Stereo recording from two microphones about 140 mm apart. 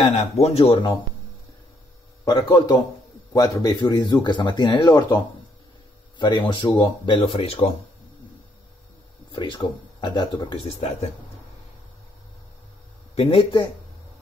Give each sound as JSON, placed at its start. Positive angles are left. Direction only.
{"t": 0.2, "sound": "speech", "side_deg": 45}
{"t": 2.2, "sound": "speech", "side_deg": 30}
{"t": 9.3, "sound": "speech", "side_deg": 35}
{"t": 13.1, "sound": "speech", "side_deg": 40}